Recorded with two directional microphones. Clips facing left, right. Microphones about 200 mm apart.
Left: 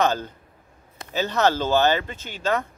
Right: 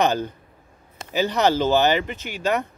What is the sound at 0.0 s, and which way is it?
Speech, 15° right (ahead or behind).